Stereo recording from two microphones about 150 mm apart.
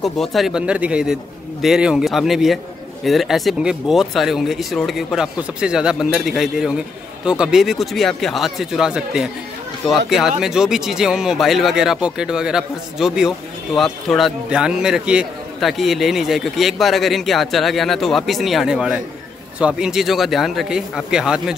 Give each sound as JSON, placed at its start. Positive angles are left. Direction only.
{"t": 0.0, "sound": "a man's voice", "side_deg": 0}